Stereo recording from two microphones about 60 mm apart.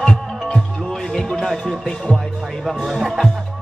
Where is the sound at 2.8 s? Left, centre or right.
Centre.